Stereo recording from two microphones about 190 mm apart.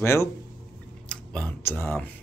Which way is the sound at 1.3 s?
10° left (ahead or behind).